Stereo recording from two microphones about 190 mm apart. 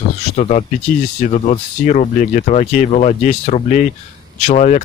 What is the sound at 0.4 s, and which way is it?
Speech, 40° left (ahead or behind).